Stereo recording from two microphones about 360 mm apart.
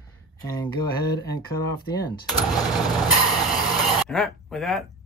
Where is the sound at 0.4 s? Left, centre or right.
Centre.